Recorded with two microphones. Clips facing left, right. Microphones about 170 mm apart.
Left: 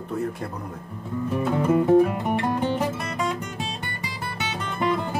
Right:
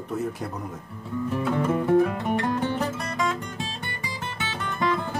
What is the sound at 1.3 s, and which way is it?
Music, 15° left (ahead or behind).